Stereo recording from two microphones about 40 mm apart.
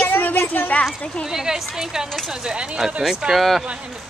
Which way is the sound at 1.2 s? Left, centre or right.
Centre.